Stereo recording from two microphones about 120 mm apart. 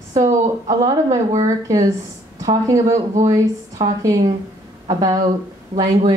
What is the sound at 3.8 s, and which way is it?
Speech, 45° right (ahead or behind).